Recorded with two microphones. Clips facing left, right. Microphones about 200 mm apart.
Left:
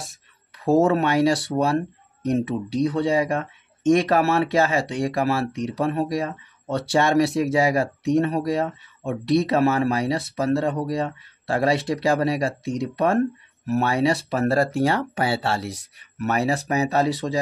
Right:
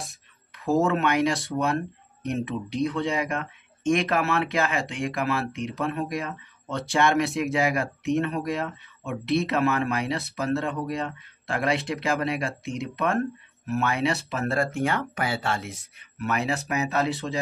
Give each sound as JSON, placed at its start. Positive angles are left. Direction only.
{"t": 0.7, "sound": "speech", "side_deg": 35}
{"t": 2.9, "sound": "speech", "side_deg": 35}